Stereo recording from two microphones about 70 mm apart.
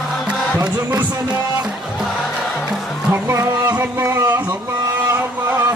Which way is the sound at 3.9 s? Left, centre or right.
Right.